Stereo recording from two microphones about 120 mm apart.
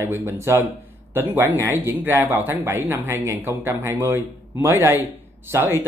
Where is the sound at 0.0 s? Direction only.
20° right (ahead or behind).